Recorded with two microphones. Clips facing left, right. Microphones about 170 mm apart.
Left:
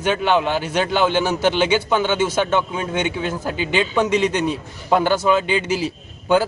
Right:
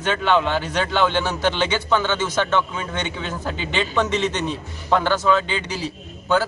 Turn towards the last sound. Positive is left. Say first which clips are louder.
# left 3 dB
turn(degrees=10)  # may be behind; listen again after turning